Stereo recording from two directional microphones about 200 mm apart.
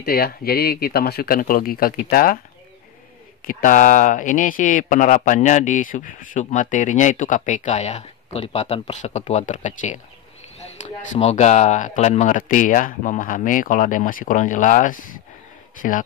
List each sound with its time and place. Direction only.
0.0 s speech: 50° left (ahead or behind)
3.4 s speech: 40° left (ahead or behind)